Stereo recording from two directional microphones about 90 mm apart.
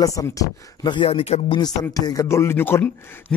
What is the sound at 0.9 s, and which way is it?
Speech, 80° left.